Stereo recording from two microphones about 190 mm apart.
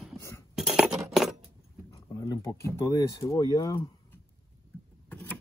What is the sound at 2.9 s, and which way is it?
Speech, 15° left (ahead or behind).